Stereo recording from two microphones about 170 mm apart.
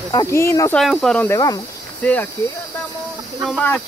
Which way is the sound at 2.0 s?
10° left (ahead or behind).